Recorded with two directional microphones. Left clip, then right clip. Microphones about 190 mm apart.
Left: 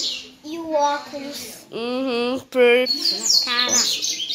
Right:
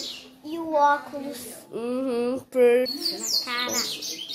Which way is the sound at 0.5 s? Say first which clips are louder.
Even; centre (ahead or behind).